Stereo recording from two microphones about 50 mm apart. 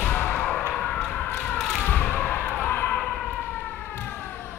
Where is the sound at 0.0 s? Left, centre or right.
Left.